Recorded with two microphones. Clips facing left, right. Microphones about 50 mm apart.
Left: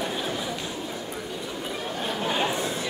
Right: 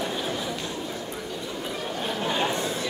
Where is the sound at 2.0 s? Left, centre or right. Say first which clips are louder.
Even; centre.